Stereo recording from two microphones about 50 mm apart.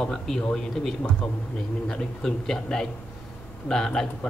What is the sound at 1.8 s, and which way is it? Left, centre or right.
A man's voice, centre.